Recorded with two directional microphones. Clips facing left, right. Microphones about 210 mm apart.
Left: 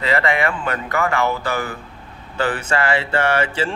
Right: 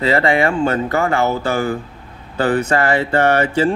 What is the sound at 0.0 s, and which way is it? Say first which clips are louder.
A man's voice: right 4 dB; 30° right (ahead or behind).